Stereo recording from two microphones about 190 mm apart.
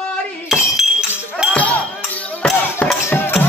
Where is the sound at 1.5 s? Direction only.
5° left (ahead or behind).